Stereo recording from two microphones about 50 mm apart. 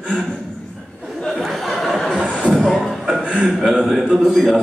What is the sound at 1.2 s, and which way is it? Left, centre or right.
Chuckle, centre.